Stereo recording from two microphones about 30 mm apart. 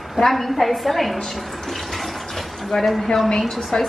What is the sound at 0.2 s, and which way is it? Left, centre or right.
A woman's voice, centre.